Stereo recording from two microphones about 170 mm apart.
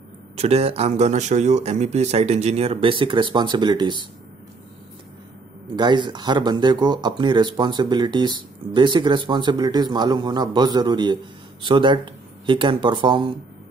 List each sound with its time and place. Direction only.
0.4 s speech: 35° right (ahead or behind)
5.8 s speech: 25° right (ahead or behind)